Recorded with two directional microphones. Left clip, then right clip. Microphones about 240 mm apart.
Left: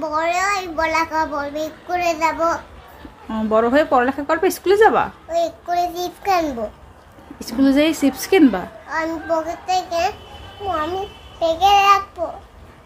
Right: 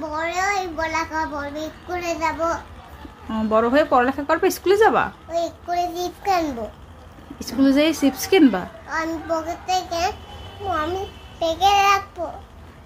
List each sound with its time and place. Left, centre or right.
0.0 s a child's voice: left
3.3 s speech: centre